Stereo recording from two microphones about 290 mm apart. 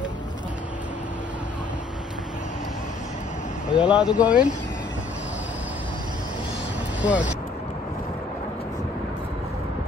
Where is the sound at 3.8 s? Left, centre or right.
Centre.